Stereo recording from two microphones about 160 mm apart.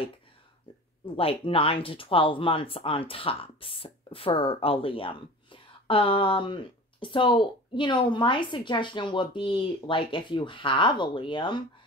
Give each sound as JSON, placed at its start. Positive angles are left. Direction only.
{"t": 1.1, "sound": "speech", "side_deg": 35}